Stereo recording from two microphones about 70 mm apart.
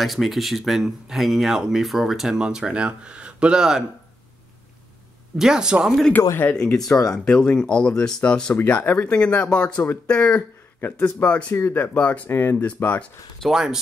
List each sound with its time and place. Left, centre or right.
0.0 s speech: centre
5.4 s speech: centre
6.4 s speech: left
7.1 s speech: centre
8.5 s speech: left
11.5 s speech: left
12.0 s speech: left
13.4 s speech: centre